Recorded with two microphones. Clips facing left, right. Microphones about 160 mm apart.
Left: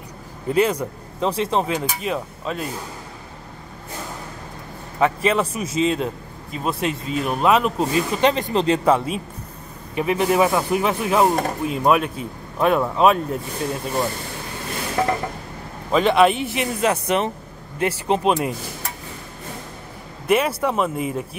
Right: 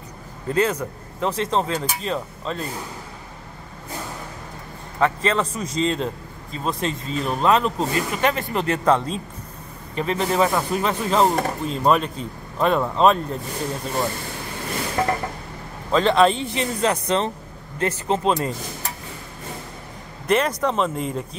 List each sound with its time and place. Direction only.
0.5 s speech: 10° left (ahead or behind)
5.0 s speech: 10° left (ahead or behind)
15.9 s speech: 10° left (ahead or behind)
20.2 s speech: 10° left (ahead or behind)